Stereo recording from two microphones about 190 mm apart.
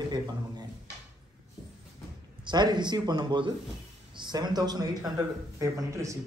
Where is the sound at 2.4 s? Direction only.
25° right (ahead or behind).